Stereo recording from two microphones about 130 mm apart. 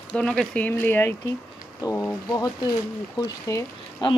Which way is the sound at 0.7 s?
15° left (ahead or behind).